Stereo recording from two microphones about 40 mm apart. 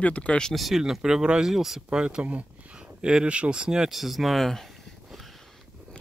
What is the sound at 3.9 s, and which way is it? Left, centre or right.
Speech, centre.